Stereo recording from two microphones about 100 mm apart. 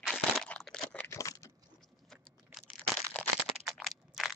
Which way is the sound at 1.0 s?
30° left (ahead or behind).